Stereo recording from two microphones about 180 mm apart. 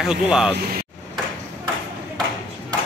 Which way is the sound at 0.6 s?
55° right (ahead or behind).